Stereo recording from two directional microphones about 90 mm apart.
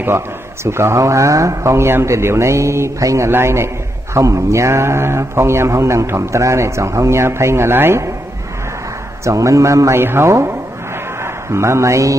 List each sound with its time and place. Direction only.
0.7 s a man's voice: 30° right (ahead or behind)
9.2 s a man's voice: 35° right (ahead or behind)
11.5 s a man's voice: 30° right (ahead or behind)